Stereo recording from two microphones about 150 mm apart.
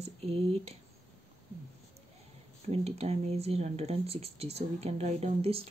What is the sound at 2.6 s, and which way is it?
Speech, 45° right (ahead or behind).